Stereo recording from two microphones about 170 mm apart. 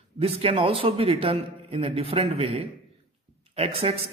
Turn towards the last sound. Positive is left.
turn(degrees=-35)  # may be behind; listen again after turning